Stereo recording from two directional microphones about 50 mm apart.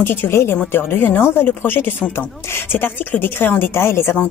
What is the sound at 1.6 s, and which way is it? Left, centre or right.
Speech, left.